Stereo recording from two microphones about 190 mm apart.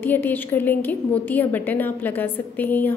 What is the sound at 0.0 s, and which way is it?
A woman's voice, 10° left (ahead or behind).